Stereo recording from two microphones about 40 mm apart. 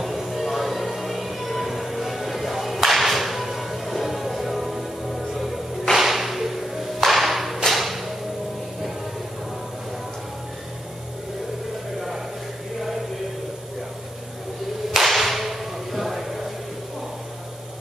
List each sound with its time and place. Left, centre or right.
0.0 s music: centre
14.9 s whip: centre